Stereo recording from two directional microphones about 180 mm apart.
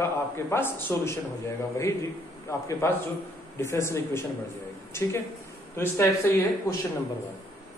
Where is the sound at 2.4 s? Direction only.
15° left (ahead or behind).